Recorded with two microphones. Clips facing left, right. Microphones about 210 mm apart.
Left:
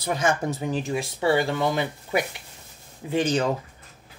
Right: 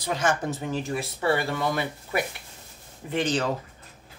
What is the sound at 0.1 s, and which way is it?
Speech, 10° left (ahead or behind).